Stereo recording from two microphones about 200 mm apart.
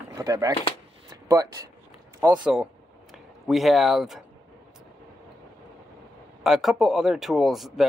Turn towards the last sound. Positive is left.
turn(degrees=0)  # may be behind; listen again after turning